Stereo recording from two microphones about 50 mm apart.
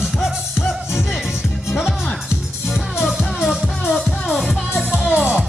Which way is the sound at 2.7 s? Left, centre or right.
Centre.